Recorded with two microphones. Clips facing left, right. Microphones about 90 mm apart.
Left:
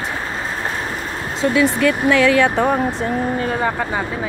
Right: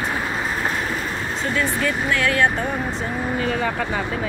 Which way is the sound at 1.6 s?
80° left.